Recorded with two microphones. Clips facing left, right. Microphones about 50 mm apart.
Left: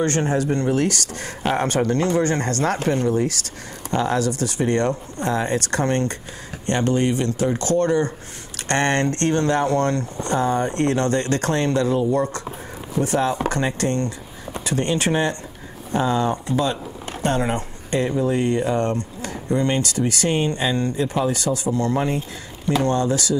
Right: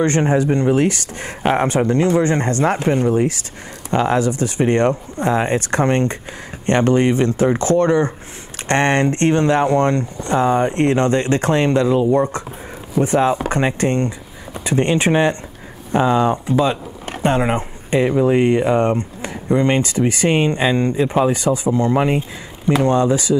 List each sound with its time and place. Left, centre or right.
0.0 s speech: right